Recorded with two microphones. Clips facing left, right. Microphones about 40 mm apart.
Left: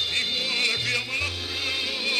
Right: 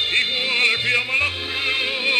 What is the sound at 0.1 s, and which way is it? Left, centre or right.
Music, right.